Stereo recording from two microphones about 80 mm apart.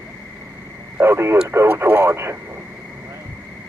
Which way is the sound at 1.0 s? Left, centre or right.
Right.